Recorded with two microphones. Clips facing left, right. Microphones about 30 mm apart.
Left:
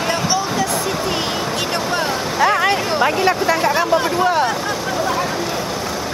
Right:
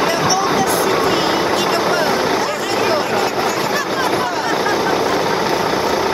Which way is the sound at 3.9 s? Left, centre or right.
Centre.